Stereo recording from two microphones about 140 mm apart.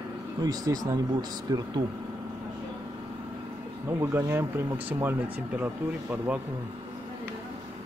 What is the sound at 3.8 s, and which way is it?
Speech, 15° right (ahead or behind).